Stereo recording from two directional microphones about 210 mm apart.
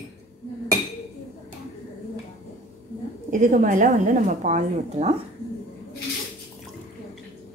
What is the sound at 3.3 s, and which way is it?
A woman's voice, 40° right (ahead or behind).